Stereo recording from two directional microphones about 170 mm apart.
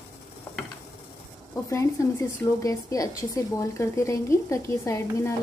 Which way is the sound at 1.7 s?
15° left (ahead or behind).